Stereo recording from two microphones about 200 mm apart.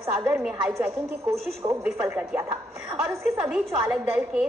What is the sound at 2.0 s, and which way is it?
Speech, 10° right (ahead or behind).